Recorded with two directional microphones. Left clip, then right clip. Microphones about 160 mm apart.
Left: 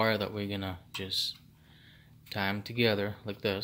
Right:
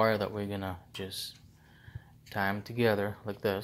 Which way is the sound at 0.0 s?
15° left (ahead or behind).